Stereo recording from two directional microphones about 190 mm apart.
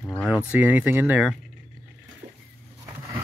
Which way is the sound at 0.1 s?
5° left (ahead or behind).